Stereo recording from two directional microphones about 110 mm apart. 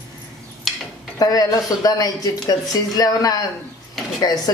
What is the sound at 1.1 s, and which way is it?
Speech, 35° left (ahead or behind).